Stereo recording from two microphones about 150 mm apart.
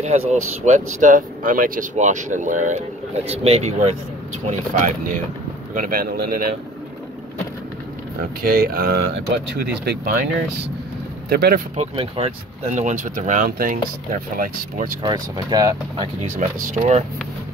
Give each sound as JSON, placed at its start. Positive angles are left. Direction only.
{"t": 0.0, "sound": "speech", "side_deg": -50}
{"t": 3.3, "sound": "speech", "side_deg": -45}
{"t": 4.5, "sound": "speech", "side_deg": -65}
{"t": 5.8, "sound": "a man's voice", "side_deg": -75}
{"t": 8.4, "sound": "speech", "side_deg": -90}
{"t": 9.8, "sound": "a man's voice", "side_deg": -70}
{"t": 11.2, "sound": "speech", "side_deg": -90}
{"t": 11.7, "sound": "speech", "side_deg": -40}
{"t": 13.5, "sound": "a man's voice", "side_deg": -75}
{"t": 15.0, "sound": "speech", "side_deg": -25}
{"t": 16.2, "sound": "speech", "side_deg": -50}